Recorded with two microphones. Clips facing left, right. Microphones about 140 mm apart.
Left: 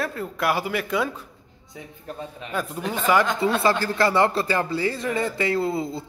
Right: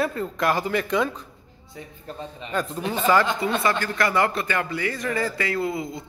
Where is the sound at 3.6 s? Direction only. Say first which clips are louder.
Left 2 dB; 30° left (ahead or behind).